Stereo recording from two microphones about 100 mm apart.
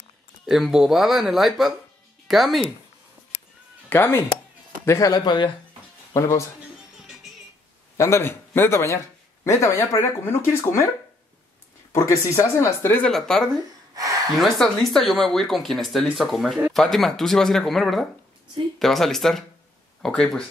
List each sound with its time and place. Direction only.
0.5 s speech: 5° right (ahead or behind)
3.9 s speech: 20° left (ahead or behind)
5.1 s speech: 50° left (ahead or behind)
6.1 s speech: 30° left (ahead or behind)
8.0 s speech: 25° left (ahead or behind)
11.9 s speech: 30° left (ahead or behind)
13.0 s speech: 5° left (ahead or behind)
13.9 s gasp: 35° right (ahead or behind)
14.3 s speech: centre (ahead or behind)